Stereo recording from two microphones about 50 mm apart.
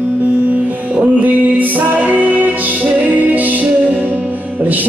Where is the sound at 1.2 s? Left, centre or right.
Right.